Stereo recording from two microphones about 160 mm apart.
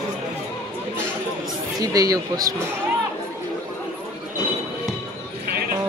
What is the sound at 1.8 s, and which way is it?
Speech, 20° right (ahead or behind).